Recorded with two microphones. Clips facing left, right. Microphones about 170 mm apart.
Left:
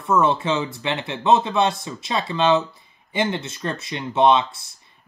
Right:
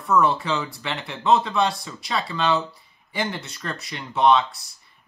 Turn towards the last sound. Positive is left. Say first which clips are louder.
# left 2 dB
turn(degrees=25)  # may be behind; listen again after turning